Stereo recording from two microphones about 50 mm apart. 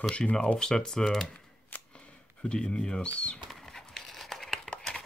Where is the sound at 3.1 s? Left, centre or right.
Left.